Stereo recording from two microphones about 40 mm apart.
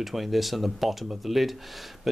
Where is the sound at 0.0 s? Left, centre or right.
Centre.